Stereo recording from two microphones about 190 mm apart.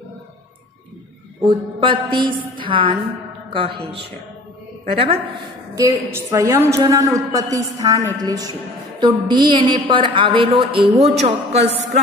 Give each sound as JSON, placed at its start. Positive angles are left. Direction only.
{"t": 1.4, "sound": "a man's voice", "side_deg": -25}
{"t": 5.8, "sound": "a woman's voice", "side_deg": -15}